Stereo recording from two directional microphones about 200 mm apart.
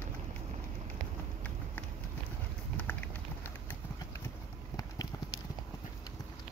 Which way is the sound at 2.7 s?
10° left (ahead or behind).